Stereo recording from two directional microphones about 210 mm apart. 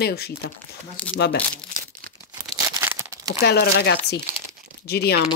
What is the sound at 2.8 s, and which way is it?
Crumpling, 10° right (ahead or behind).